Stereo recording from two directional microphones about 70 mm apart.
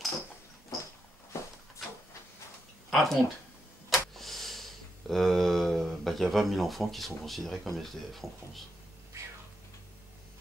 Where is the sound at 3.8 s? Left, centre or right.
Centre.